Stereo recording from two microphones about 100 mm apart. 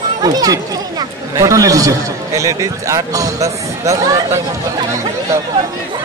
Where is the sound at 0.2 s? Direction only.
40° right (ahead or behind).